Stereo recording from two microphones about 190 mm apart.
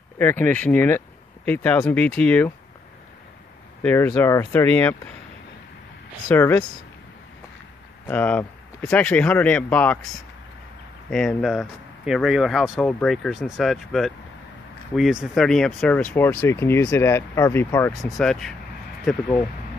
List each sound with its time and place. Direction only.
0.2 s speech: 10° left (ahead or behind)
3.8 s speech: 10° left (ahead or behind)
6.3 s speech: 10° left (ahead or behind)
8.1 s speech: 10° left (ahead or behind)
18.1 s speech: centre (ahead or behind)